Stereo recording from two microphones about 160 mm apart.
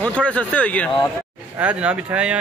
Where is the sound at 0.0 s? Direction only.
10° left (ahead or behind).